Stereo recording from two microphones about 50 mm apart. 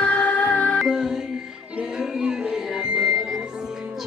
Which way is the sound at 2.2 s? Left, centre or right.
Centre.